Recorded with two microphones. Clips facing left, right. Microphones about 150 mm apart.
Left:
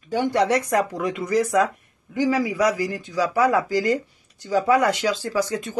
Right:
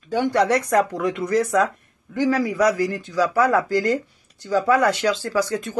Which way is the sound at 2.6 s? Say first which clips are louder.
Right 4 dB; 50° right (ahead or behind).